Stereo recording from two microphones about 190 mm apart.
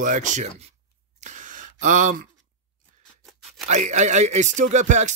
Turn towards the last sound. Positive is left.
turn(degrees=-40)  # may be behind; listen again after turning